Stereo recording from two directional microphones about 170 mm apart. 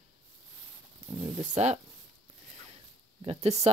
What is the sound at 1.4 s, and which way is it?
Speech, 45° right (ahead or behind).